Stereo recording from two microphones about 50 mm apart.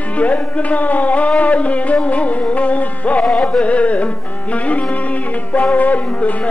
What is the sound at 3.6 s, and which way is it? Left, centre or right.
Music, left.